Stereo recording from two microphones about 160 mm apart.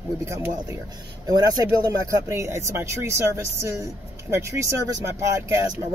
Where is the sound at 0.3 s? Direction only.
15° right (ahead or behind).